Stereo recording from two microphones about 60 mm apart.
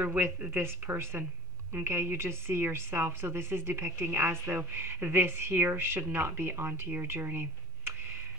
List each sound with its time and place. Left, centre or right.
0.0 s a woman's voice: right